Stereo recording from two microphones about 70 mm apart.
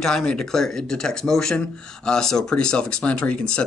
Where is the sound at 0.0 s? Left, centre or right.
Centre.